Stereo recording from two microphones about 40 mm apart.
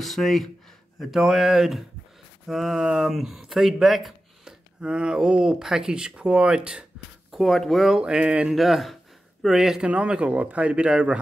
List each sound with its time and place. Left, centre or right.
0.0 s speech: centre
0.9 s speech: centre
4.5 s speech: right
7.3 s speech: centre
8.0 s speech: right
8.5 s speech: centre
9.8 s speech: right
10.3 s speech: right